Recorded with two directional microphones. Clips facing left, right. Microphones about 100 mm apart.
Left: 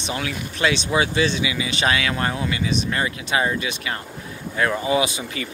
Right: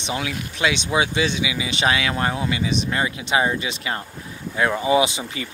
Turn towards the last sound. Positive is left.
turn(degrees=-25)  # may be behind; listen again after turning